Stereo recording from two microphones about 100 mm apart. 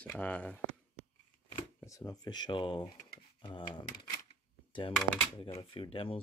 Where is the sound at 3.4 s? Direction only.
45° left (ahead or behind).